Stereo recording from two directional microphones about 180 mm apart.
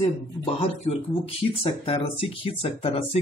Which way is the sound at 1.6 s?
35° left (ahead or behind).